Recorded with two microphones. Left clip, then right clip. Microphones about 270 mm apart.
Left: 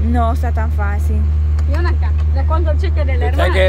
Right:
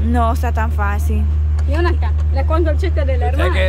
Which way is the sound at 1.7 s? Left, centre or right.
Right.